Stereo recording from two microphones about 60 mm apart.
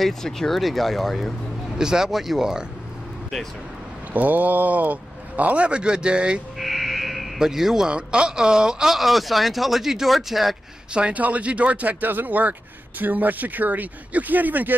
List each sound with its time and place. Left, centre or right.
0.0 s speech: centre
1.8 s speech: centre
4.1 s speech: right
6.6 s speech: centre
10.9 s speech: centre